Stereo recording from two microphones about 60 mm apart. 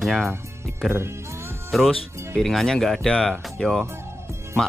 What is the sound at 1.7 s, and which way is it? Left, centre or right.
Speech, centre.